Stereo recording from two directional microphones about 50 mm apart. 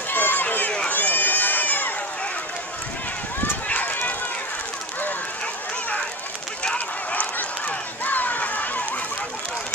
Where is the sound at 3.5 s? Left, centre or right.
Left.